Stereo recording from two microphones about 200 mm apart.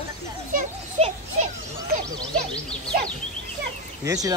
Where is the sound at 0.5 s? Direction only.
40° right (ahead or behind).